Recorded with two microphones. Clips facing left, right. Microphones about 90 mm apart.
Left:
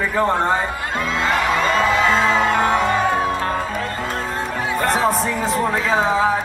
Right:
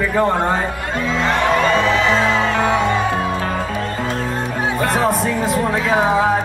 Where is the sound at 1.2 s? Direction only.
5° left (ahead or behind).